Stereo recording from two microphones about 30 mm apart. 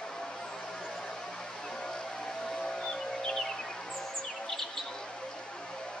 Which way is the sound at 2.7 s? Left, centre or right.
Left.